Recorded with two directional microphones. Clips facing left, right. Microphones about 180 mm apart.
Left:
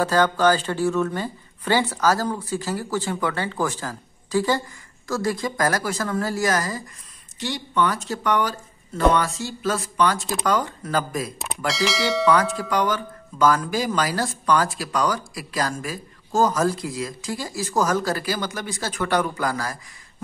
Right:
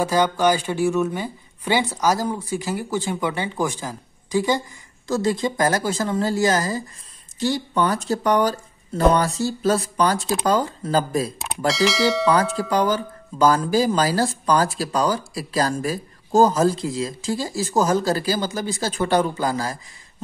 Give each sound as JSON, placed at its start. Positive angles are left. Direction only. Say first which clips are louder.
{"t": 0.0, "sound": "speech", "louder": "even", "side_deg": -15}
{"t": 11.4, "sound": "speech", "louder": "right 3 dB", "side_deg": 0}
{"t": 12.5, "sound": "speech", "louder": "right 3 dB", "side_deg": -30}